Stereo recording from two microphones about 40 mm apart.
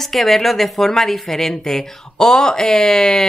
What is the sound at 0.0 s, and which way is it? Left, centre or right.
A woman's voice, centre.